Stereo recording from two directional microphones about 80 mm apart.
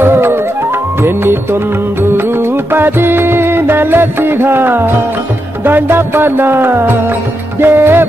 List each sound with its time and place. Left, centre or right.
0.0 s music: right